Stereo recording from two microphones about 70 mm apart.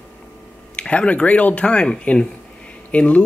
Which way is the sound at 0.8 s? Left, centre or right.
Centre.